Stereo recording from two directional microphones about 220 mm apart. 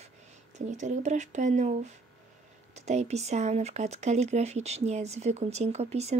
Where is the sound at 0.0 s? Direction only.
30° right (ahead or behind).